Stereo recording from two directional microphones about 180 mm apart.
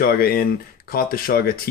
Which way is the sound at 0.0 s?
55° left (ahead or behind).